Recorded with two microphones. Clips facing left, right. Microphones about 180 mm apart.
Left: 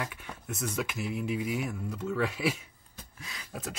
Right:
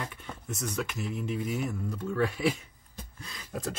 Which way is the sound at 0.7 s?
5° left (ahead or behind).